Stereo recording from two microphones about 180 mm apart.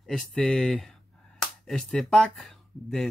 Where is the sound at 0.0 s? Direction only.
5° left (ahead or behind).